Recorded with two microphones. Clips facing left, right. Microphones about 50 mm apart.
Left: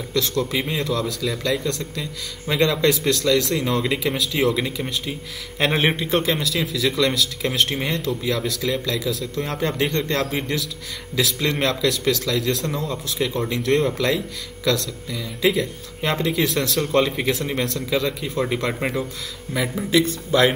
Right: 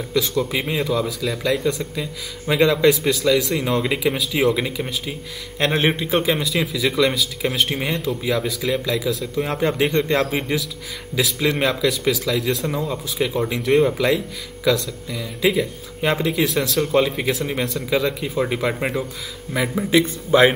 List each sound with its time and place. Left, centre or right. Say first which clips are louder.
0.1 s a man's voice: right 1 dB; centre